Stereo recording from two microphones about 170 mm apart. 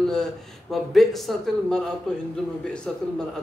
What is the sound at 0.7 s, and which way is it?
A man's voice, centre (ahead or behind).